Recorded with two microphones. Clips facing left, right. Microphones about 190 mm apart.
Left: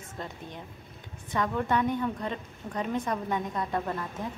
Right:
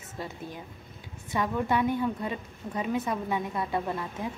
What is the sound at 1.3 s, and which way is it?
A woman's voice, 10° right (ahead or behind).